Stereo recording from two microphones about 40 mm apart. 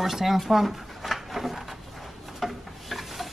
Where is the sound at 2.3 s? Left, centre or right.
Centre.